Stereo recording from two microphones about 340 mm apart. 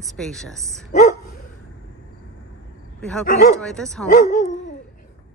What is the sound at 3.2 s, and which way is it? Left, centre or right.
Speech, left.